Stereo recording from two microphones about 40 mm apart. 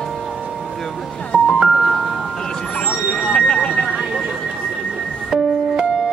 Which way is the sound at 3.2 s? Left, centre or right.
Left.